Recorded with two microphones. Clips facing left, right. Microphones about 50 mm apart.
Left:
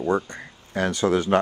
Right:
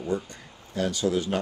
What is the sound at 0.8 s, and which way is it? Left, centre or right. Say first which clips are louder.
Speech: left 4 dB; left.